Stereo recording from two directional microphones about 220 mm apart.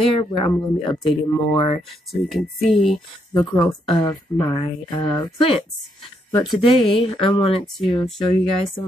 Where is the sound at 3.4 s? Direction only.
20° left (ahead or behind).